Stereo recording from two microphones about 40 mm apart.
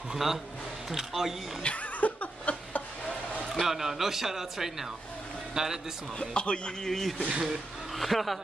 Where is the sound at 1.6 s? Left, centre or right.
Left.